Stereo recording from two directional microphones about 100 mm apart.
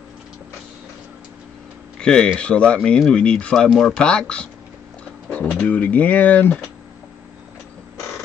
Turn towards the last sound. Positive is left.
turn(degrees=15)  # may be behind; listen again after turning